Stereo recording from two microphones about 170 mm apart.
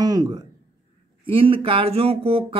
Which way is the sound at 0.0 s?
25° right (ahead or behind).